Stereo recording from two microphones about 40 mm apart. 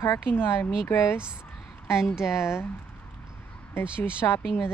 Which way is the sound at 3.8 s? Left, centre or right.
Right.